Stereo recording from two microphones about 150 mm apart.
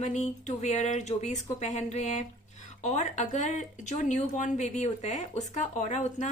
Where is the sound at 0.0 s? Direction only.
50° left (ahead or behind).